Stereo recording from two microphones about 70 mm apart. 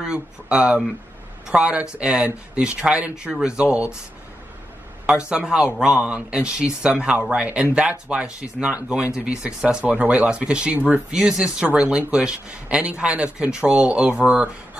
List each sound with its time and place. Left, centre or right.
0.0 s speech: centre
5.0 s speech: centre
11.1 s speech: centre